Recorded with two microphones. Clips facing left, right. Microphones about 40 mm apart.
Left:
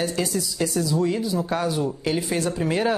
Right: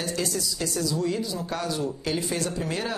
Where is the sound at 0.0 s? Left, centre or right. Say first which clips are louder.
Left 4 dB; centre.